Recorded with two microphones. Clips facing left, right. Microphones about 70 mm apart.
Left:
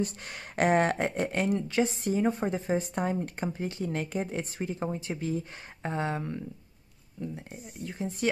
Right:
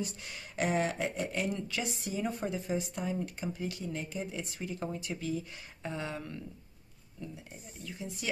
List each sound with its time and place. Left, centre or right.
0.0 s speech: left
3.4 s speech: left
3.8 s speech: left
4.6 s speech: left